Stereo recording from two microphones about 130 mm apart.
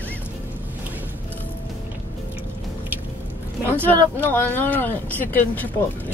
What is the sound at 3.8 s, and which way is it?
Speech, 10° left (ahead or behind).